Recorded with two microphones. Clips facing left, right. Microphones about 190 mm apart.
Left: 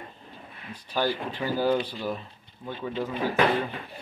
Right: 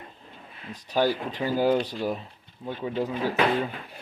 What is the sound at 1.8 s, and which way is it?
Speech, 40° right (ahead or behind).